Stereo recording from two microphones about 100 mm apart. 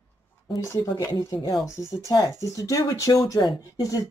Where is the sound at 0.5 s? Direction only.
30° left (ahead or behind).